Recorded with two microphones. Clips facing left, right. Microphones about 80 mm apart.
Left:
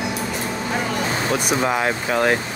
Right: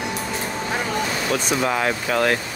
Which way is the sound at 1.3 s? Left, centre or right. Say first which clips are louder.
Left 1 dB; centre.